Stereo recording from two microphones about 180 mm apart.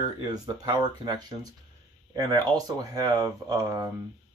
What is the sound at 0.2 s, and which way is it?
Speech, 25° right (ahead or behind).